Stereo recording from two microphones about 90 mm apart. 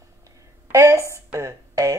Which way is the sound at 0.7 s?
35° right (ahead or behind).